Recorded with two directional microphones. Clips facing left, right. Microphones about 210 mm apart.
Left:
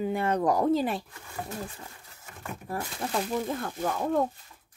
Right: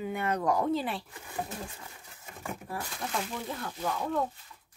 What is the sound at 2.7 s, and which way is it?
Speech, 45° left (ahead or behind).